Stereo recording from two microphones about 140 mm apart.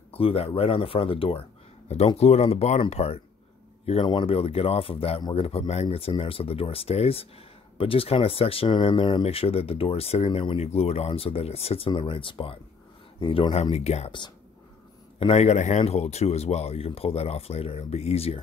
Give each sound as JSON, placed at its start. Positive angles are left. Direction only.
{"t": 0.1, "sound": "speech", "side_deg": 45}
{"t": 15.1, "sound": "speech", "side_deg": 45}